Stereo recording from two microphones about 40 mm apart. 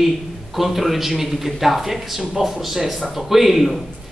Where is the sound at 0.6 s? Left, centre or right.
Centre.